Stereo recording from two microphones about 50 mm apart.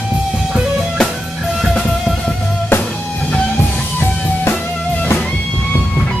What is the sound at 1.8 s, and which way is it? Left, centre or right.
Music, centre.